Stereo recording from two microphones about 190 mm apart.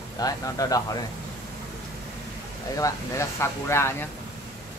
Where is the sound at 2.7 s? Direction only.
15° left (ahead or behind).